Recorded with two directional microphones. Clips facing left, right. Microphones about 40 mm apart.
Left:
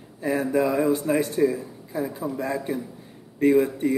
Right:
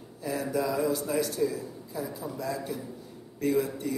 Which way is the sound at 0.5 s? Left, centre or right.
Left.